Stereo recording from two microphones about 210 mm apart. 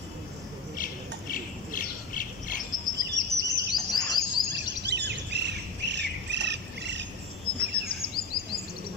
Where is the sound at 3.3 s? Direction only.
20° left (ahead or behind).